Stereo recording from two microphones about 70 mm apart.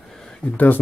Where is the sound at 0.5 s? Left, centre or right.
Left.